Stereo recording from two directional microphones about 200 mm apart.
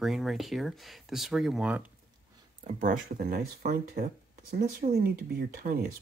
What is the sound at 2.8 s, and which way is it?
Speech, 45° right (ahead or behind).